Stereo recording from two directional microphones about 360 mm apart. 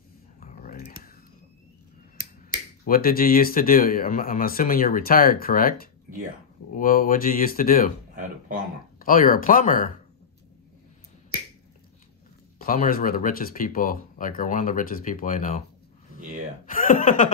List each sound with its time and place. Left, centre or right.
0.4 s typing: left
2.5 s speech: left
9.0 s speech: left
12.6 s speech: left
16.6 s speech: left